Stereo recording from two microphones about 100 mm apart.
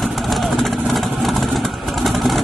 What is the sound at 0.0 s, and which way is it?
Vehicle, centre (ahead or behind).